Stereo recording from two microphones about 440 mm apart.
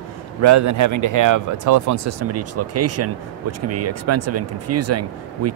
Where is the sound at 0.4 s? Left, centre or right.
Right.